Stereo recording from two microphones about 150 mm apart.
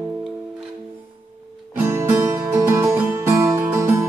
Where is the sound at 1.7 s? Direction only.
15° right (ahead or behind).